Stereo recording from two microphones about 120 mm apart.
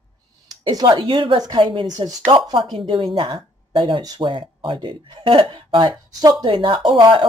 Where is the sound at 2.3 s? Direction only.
45° right (ahead or behind).